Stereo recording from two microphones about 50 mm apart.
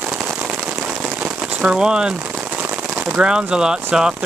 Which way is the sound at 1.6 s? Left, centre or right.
Centre.